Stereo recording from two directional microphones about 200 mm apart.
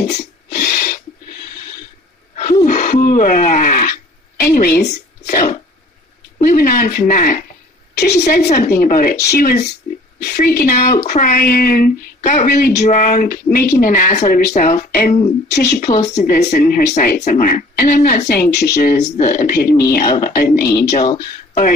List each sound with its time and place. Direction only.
0.1 s a sound: 40° left (ahead or behind)
2.3 s a sound: 40° left (ahead or behind)
4.5 s speech: 50° left (ahead or behind)
11.4 s speech: 50° left (ahead or behind)
15.4 s a woman's voice: 55° left (ahead or behind)
15.9 s speech: 35° left (ahead or behind)
20.9 s speech: 35° left (ahead or behind)